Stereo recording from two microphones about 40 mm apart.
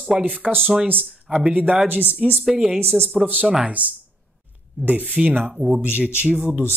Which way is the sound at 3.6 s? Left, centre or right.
Right.